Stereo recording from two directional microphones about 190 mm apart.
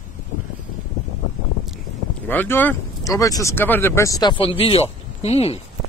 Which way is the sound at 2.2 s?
10° left (ahead or behind).